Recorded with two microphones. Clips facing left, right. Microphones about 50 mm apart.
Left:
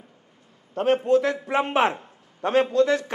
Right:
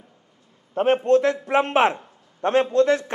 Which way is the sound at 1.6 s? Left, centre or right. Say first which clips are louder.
Right 2 dB; right.